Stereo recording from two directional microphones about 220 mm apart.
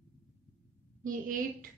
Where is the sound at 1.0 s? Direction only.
35° right (ahead or behind).